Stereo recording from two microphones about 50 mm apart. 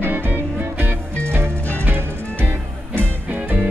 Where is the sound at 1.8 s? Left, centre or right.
Right.